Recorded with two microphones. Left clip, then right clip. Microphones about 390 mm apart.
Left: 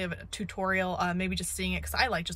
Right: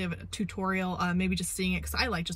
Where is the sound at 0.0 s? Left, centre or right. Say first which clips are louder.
Left 1 dB; centre.